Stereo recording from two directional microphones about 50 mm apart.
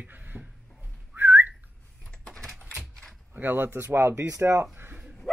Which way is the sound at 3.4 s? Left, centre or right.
Right.